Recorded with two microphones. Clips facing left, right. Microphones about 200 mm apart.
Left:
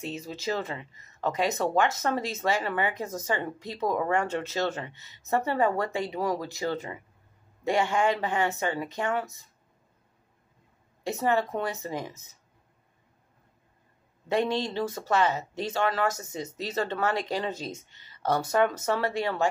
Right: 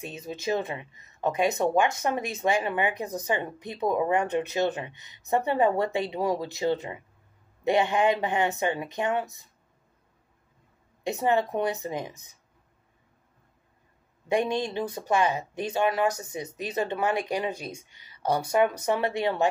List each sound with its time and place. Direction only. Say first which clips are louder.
0.0 s speech: even; 15° right (ahead or behind)
11.1 s speech: right 1 dB; 15° right (ahead or behind)
14.3 s speech: right 1 dB; 15° right (ahead or behind)